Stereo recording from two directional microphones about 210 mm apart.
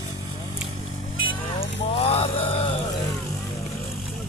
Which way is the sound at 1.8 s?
25° left (ahead or behind).